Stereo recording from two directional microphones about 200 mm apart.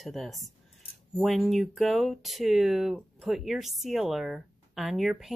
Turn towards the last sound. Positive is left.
turn(degrees=0)  # may be behind; listen again after turning